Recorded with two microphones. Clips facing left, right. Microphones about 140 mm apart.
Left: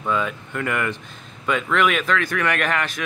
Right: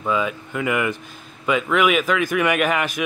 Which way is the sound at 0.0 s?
5° right (ahead or behind).